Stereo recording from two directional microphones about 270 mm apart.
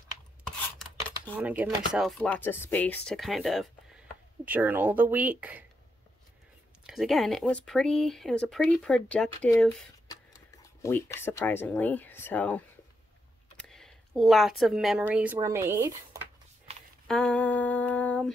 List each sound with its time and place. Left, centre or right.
1.3 s speech: centre
6.9 s speech: centre
13.6 s a sound: centre
14.6 s speech: centre
16.7 s a sound: right
17.1 s speech: centre